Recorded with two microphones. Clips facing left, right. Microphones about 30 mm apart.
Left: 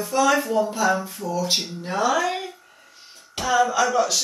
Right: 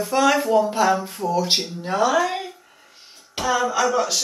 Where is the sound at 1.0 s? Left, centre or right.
Right.